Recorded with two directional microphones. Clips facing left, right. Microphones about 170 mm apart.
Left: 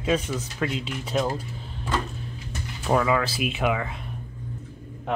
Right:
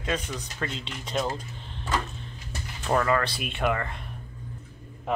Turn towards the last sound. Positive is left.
turn(degrees=0)  # may be behind; listen again after turning